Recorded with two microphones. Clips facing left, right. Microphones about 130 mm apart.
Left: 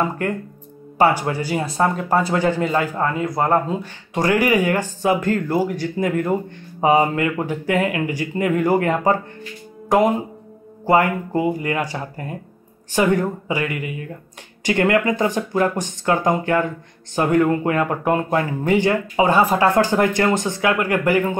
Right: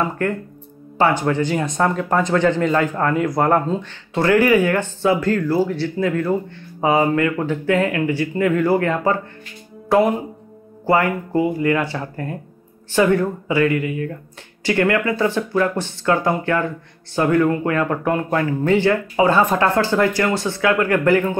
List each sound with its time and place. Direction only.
0.2 s speech: 15° left (ahead or behind)
19.4 s speech: 5° left (ahead or behind)
19.7 s speech: 15° left (ahead or behind)